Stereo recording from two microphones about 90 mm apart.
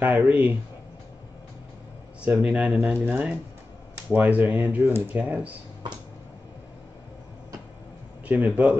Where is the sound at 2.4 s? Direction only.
15° right (ahead or behind).